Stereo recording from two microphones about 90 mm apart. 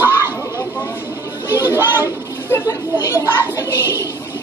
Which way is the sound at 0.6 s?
35° left (ahead or behind).